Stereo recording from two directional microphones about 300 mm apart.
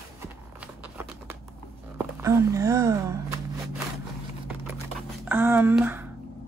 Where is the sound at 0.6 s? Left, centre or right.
Centre.